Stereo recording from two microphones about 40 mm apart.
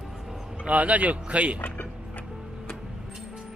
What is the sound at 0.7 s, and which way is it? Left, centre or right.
Speech, right.